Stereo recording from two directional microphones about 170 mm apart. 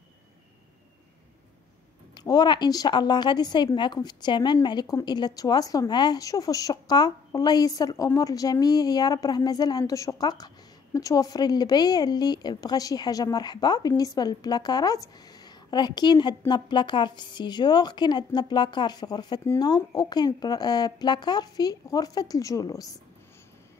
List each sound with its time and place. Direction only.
2.1 s a woman's voice: 25° left (ahead or behind)